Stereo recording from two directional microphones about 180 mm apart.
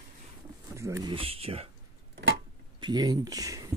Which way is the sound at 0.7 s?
15° right (ahead or behind).